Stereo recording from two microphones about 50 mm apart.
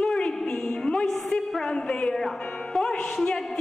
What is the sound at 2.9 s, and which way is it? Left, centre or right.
Speech, centre.